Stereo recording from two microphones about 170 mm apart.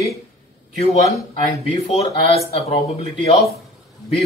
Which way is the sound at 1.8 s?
35° left (ahead or behind).